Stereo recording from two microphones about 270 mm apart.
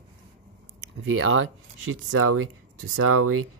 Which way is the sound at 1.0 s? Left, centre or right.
Right.